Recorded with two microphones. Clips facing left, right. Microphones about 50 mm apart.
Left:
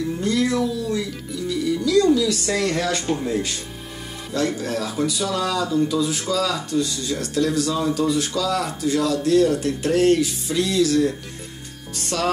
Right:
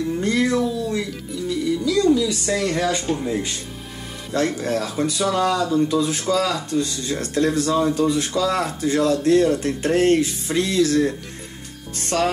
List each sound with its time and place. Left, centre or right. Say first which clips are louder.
0.2 s a sound: right 1 dB; right
2.0 s speech: left 2 dB; centre
4.3 s speech: right 2 dB; right